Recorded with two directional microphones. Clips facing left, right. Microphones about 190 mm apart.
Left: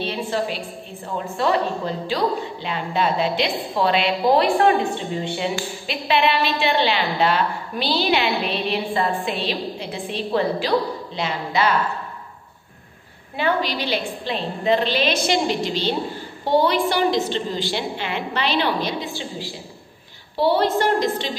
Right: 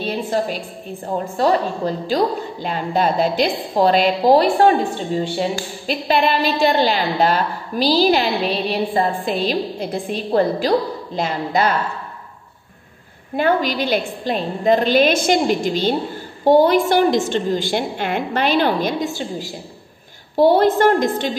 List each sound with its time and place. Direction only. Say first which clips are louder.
0.0 s a woman's voice: right 3 dB; 45° right (ahead or behind)
13.4 s a woman's voice: right 4 dB; 45° right (ahead or behind)